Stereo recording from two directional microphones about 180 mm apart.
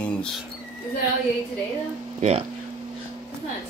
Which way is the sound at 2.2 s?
35° right (ahead or behind).